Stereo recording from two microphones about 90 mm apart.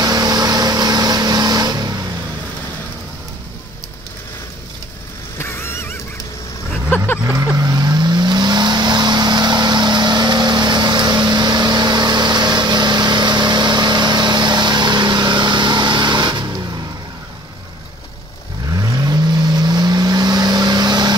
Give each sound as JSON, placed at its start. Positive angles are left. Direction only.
{"t": 0.0, "sound": "vehicle", "side_deg": -50}
{"t": 5.4, "sound": "vehicle", "side_deg": 25}
{"t": 7.5, "sound": "vehicle", "side_deg": -50}
{"t": 18.8, "sound": "vehicle", "side_deg": -50}